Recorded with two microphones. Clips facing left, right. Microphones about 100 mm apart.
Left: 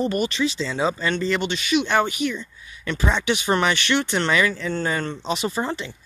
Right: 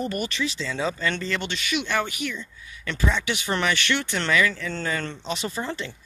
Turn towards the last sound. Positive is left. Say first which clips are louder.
# left 5 dB
turn(degrees=20)  # may be behind; listen again after turning